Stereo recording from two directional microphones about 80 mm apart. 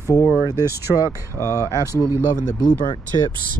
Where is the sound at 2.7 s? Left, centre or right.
Left.